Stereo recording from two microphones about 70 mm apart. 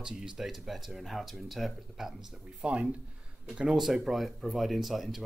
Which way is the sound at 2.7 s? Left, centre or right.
Centre.